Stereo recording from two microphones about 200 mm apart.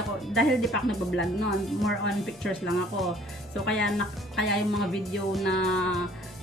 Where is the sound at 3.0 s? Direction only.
Centre (ahead or behind).